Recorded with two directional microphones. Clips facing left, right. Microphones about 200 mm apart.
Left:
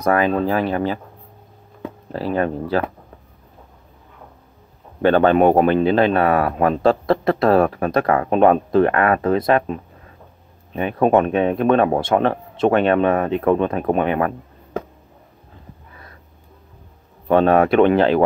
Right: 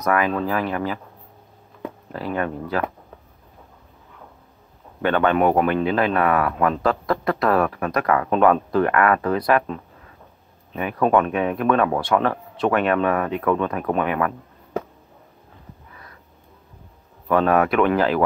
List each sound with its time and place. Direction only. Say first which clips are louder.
0.0 s a man's voice: left 4 dB; 30° left (ahead or behind)
2.1 s speech: left 5 dB; 30° left (ahead or behind)
5.0 s a man's voice: left 5 dB; 30° left (ahead or behind)
17.3 s a man's voice: left 4 dB; 30° left (ahead or behind)